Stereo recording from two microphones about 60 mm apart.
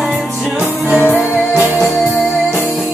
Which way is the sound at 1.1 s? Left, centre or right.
Right.